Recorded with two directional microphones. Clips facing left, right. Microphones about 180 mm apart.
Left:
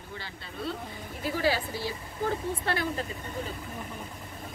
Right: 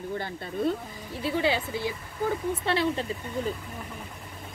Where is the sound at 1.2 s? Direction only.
25° right (ahead or behind).